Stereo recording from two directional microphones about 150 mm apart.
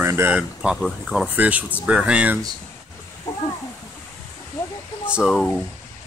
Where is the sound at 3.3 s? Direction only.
20° left (ahead or behind).